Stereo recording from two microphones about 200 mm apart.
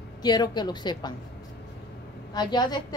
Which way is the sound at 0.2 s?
20° left (ahead or behind).